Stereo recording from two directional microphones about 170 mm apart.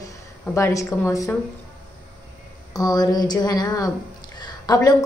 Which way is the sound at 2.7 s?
20° left (ahead or behind).